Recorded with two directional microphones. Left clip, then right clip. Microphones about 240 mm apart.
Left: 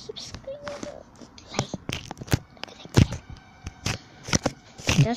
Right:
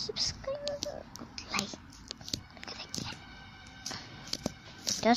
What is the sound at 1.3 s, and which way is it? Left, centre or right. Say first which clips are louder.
Whispering: left 4 dB; right.